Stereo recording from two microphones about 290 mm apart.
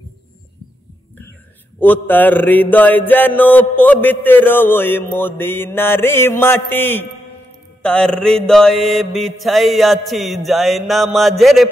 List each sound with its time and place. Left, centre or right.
1.8 s mantra: centre